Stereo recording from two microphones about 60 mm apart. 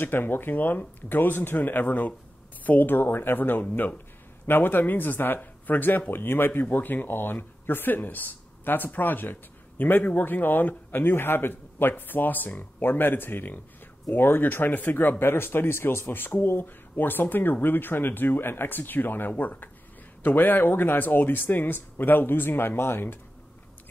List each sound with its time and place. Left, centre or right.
0.0 s speech: left